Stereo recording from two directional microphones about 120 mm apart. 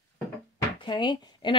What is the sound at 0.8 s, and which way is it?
Speech, 40° left (ahead or behind).